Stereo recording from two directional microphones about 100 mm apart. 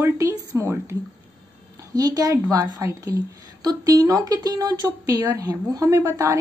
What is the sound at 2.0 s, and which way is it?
A woman's voice, 40° right (ahead or behind).